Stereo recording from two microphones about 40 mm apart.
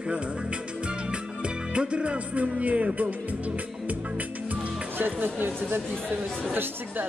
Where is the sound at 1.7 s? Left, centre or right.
Right.